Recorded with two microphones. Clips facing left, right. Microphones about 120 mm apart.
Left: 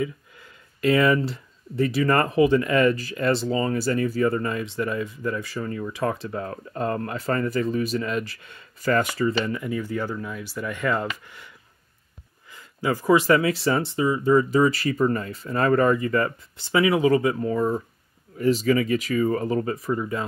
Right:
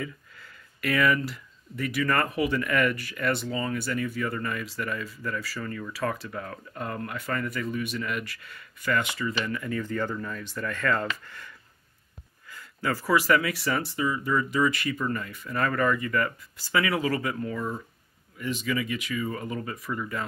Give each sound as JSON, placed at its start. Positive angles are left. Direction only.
{"t": 0.0, "sound": "speech", "side_deg": 20}
{"t": 8.9, "sound": "speech", "side_deg": 40}
{"t": 9.4, "sound": "speech", "side_deg": 20}